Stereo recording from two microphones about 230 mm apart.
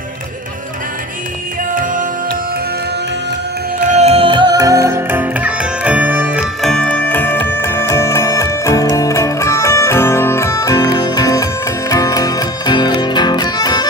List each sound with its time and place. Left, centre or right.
3.8 s music: right; by 13.8 s centre